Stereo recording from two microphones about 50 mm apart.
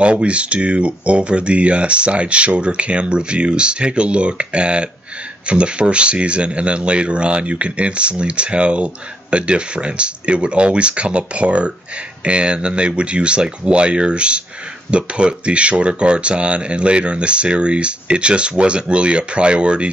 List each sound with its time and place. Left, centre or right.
0.0 s speech: right